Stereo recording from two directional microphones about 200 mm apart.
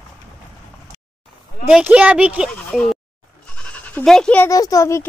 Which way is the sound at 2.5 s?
5° left (ahead or behind).